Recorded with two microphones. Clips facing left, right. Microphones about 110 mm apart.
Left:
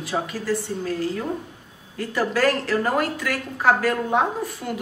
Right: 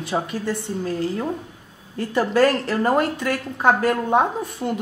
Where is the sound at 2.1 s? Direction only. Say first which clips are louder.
Right 3 dB; 25° right (ahead or behind).